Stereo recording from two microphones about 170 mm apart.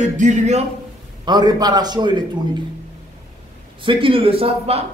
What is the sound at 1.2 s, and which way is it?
A man's voice, 25° right (ahead or behind).